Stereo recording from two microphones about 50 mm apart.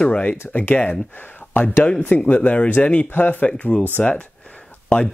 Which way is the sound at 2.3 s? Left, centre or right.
Left.